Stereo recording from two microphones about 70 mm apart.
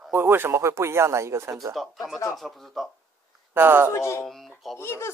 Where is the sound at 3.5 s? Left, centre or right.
Right.